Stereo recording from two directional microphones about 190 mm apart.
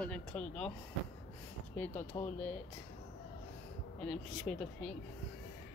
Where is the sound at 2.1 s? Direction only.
15° left (ahead or behind).